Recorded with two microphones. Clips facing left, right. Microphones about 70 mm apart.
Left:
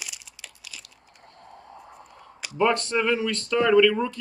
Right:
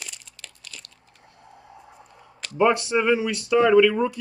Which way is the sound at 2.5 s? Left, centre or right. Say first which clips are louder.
Right 3 dB; centre.